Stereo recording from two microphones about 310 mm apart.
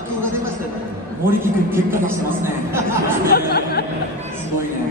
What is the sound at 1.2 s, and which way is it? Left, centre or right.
Speech, centre.